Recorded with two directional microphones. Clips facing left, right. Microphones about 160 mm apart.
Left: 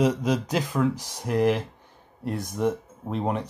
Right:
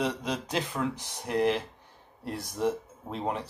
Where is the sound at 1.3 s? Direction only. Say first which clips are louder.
Left 4 dB; 10° left (ahead or behind).